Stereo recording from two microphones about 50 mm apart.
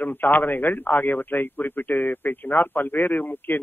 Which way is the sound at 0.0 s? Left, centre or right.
Left.